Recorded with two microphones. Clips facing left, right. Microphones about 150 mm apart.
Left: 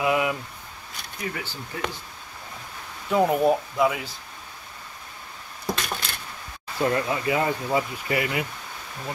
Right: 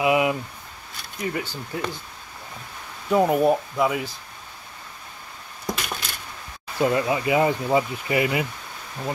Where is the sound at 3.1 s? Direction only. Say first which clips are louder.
Right 2 dB; 5° right (ahead or behind).